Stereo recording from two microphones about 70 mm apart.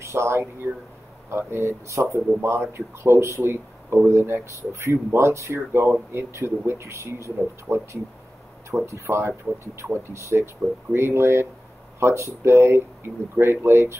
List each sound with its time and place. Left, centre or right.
0.0 s speech: right